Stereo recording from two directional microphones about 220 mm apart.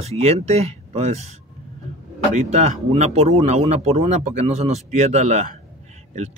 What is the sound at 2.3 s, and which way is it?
Speech, 30° right (ahead or behind).